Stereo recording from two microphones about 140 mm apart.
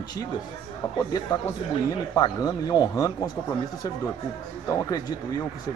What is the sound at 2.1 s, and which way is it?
Speech, 25° left (ahead or behind).